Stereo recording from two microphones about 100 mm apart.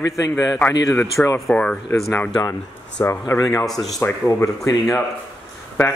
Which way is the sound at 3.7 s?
Centre (ahead or behind).